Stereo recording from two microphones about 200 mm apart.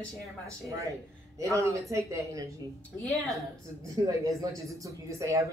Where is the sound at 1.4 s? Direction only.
15° right (ahead or behind).